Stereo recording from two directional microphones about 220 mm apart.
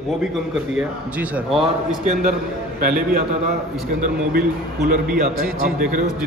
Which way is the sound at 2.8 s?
40° right (ahead or behind).